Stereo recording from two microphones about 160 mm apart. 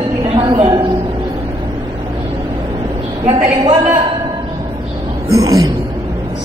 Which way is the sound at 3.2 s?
35° right (ahead or behind).